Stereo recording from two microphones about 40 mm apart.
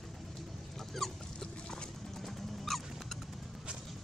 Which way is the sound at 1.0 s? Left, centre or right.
Centre.